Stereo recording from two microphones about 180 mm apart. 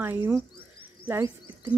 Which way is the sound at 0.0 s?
10° right (ahead or behind).